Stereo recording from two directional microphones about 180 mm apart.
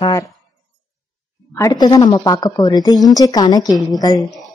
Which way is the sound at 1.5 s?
20° left (ahead or behind).